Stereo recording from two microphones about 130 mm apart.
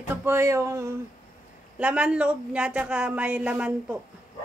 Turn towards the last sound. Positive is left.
turn(degrees=-10)  # may be behind; listen again after turning